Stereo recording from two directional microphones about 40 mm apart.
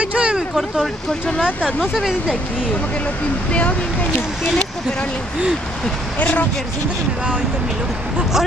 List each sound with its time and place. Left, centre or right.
0.0 s a sound: right
0.6 s speech: centre
6.1 s speech: left